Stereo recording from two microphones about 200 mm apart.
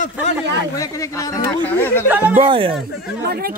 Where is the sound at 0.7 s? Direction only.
15° left (ahead or behind).